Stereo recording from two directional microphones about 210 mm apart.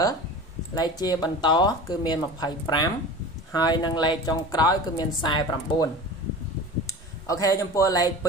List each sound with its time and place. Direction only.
0.7 s a woman's voice: 20° left (ahead or behind)
6.9 s speech: 15° left (ahead or behind)